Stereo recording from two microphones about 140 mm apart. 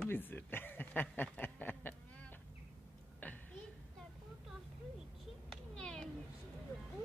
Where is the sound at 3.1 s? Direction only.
10° left (ahead or behind).